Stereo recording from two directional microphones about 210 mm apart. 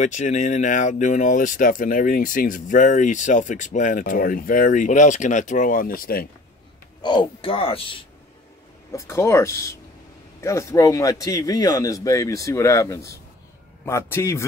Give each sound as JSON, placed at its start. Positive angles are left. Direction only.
{"t": 0.0, "sound": "speech", "side_deg": 35}
{"t": 7.0, "sound": "speech", "side_deg": 20}
{"t": 8.9, "sound": "a man's voice", "side_deg": 15}